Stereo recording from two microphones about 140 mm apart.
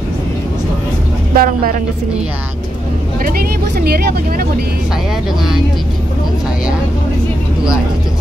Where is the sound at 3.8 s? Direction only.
90° right.